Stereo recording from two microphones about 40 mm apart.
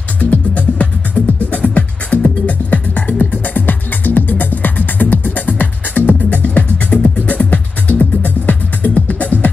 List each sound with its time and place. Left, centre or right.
0.2 s music: left